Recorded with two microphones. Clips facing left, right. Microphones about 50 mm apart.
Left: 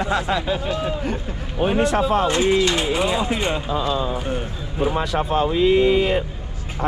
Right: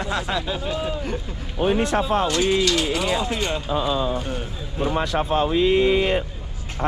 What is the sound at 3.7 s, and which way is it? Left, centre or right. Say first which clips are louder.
Speech: even; left.